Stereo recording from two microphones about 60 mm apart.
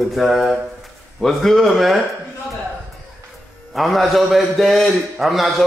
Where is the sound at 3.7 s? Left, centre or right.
Centre.